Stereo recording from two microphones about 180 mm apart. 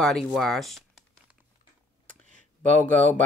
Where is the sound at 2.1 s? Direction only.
45° right (ahead or behind).